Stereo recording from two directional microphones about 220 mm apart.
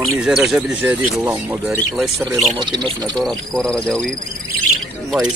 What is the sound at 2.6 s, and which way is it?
Speech, 20° right (ahead or behind).